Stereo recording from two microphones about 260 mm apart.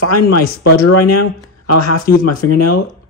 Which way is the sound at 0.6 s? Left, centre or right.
Left.